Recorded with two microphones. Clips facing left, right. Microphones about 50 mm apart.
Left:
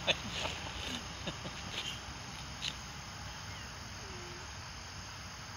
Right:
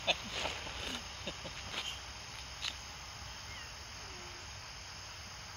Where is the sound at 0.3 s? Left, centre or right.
Right.